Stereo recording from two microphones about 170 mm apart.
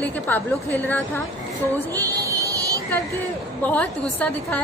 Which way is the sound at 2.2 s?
20° right (ahead or behind).